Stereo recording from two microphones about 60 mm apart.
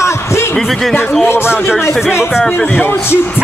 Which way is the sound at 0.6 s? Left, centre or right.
Centre.